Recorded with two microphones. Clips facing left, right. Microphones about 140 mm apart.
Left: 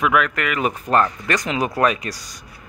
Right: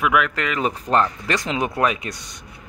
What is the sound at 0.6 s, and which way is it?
Speech, 5° left (ahead or behind).